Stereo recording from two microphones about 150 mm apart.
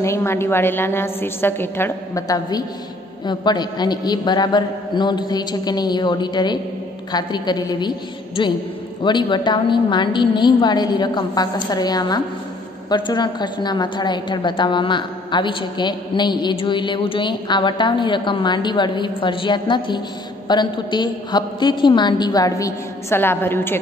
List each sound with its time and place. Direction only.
0.0 s a woman's voice: 20° left (ahead or behind)
9.0 s a woman's voice: 30° left (ahead or behind); by 23.8 s 15° left (ahead or behind)